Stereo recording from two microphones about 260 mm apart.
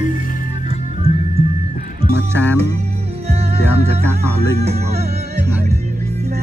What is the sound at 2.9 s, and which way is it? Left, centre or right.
Music, right.